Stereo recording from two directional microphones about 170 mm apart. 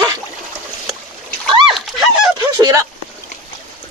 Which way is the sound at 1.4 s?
Centre (ahead or behind).